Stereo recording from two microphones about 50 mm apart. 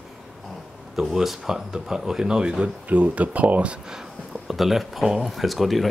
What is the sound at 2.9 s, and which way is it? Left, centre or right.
Speech, right.